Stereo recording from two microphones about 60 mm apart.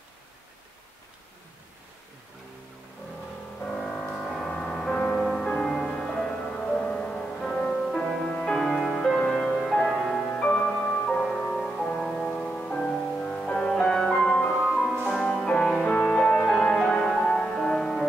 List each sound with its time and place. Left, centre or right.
4.1 s music: centre; by 12.7 s left
12.7 s music: centre
15.0 s music: centre